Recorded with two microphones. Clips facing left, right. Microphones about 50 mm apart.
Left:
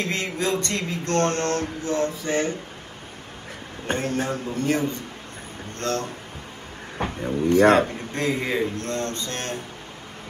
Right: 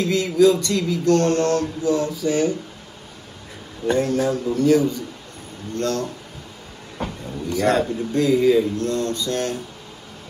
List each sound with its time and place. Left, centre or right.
0.0 s speech: left
3.8 s speech: left